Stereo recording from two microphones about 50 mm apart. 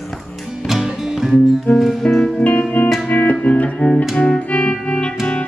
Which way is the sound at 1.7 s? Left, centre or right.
Centre.